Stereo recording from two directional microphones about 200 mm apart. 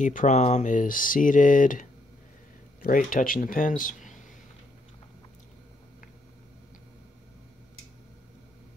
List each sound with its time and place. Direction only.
0.0 s speech: 40° left (ahead or behind)